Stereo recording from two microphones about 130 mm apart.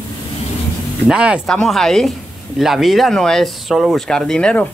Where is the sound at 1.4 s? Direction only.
5° left (ahead or behind).